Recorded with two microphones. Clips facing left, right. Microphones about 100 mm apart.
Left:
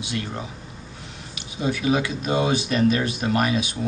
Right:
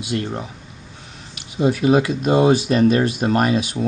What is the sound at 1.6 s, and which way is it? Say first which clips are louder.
Speech: right 6 dB; 45° right (ahead or behind).